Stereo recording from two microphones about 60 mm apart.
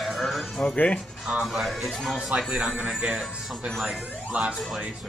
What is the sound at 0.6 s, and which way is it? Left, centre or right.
Speech, left.